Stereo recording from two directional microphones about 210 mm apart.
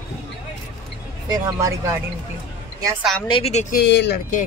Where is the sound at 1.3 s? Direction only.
15° right (ahead or behind).